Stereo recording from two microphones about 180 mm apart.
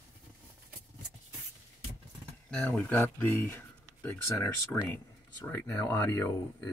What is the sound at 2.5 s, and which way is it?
Speech, 5° left (ahead or behind).